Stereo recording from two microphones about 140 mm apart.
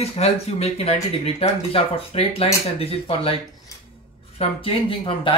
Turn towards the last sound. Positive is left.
turn(degrees=40)  # may be behind; listen again after turning